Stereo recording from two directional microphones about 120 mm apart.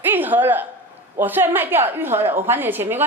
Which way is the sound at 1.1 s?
15° right (ahead or behind).